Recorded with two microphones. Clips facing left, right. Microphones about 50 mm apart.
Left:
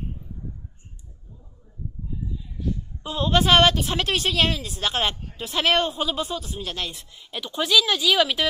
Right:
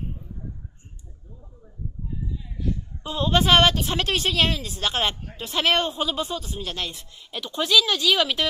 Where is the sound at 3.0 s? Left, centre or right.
Centre.